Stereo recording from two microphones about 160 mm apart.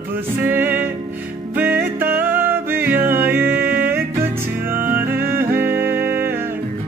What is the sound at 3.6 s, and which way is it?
Music, 65° right (ahead or behind).